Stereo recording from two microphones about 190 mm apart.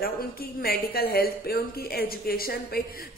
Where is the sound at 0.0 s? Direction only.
50° left (ahead or behind).